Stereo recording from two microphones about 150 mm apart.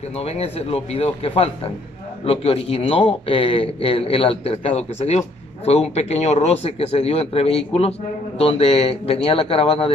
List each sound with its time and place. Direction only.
0.2 s speech: 45° left (ahead or behind)